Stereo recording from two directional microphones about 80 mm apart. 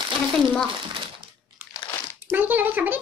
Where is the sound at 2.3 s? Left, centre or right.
Right.